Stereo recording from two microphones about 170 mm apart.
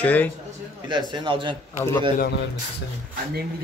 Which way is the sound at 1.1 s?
30° right (ahead or behind).